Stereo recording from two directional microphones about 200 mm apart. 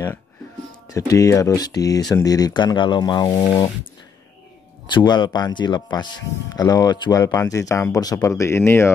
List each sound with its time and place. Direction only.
0.8 s speech: 15° left (ahead or behind)
4.9 s speech: 20° left (ahead or behind)